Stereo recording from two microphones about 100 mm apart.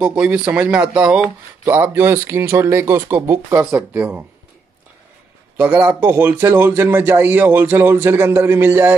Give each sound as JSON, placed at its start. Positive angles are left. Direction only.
{"t": 0.0, "sound": "speech", "side_deg": -10}
{"t": 1.7, "sound": "speech", "side_deg": -20}
{"t": 3.2, "sound": "speech", "side_deg": -35}
{"t": 4.0, "sound": "speech", "side_deg": -15}
{"t": 5.6, "sound": "speech", "side_deg": -15}